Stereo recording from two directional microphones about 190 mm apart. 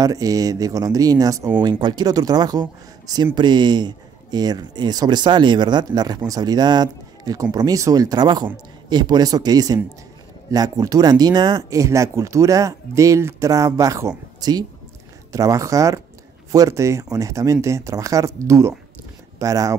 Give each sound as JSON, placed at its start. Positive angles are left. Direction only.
{"t": 0.0, "sound": "speech", "side_deg": -20}